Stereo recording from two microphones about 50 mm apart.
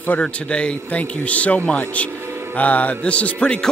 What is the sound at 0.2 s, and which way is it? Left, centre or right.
A man's voice, left.